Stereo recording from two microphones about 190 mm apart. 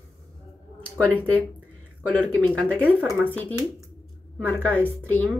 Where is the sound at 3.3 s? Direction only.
10° left (ahead or behind).